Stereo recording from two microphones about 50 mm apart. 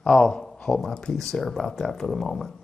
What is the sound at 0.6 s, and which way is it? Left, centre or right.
A man's voice, centre.